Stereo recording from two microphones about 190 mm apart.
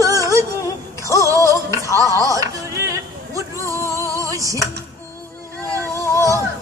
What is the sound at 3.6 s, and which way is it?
Music, 15° left (ahead or behind).